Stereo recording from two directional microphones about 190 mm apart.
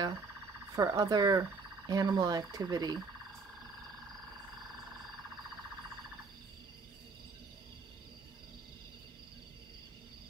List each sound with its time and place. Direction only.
0.7 s speech: 20° right (ahead or behind)